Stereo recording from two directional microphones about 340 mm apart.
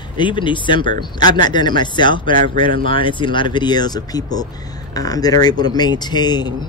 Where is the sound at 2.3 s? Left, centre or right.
Right.